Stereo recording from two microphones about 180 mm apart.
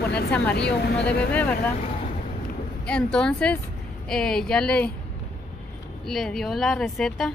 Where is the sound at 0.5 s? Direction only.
70° left (ahead or behind).